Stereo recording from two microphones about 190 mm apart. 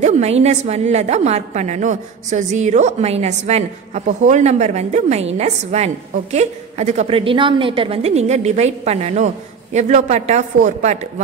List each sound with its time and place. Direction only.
0.0 s a woman's voice: 35° right (ahead or behind)